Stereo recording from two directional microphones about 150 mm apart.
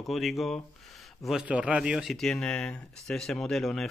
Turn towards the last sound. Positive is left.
turn(degrees=0)  # may be behind; listen again after turning